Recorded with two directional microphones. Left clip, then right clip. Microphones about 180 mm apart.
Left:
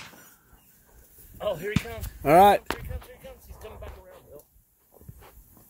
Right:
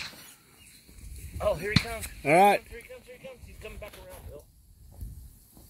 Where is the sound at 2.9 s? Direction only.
35° left (ahead or behind).